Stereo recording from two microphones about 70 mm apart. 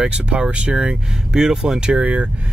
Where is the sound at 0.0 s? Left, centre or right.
Centre.